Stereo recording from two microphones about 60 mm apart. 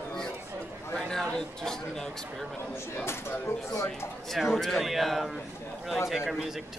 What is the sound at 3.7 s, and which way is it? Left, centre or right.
Speech, left.